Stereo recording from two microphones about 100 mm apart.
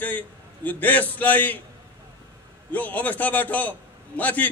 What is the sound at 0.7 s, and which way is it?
Speech, 15° left (ahead or behind).